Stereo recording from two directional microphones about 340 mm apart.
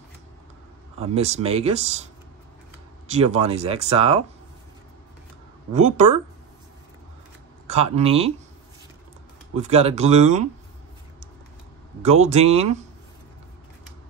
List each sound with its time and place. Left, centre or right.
0.9 s speech: centre
3.1 s speech: centre
5.7 s speech: centre
7.6 s speech: centre
9.6 s speech: centre
12.0 s speech: centre